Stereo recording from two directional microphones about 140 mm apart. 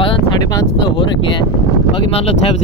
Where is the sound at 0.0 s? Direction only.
35° left (ahead or behind).